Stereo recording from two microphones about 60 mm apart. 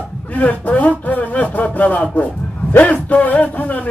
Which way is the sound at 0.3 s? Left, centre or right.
Left.